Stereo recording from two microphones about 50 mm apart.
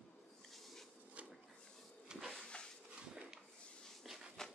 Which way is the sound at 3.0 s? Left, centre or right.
Centre.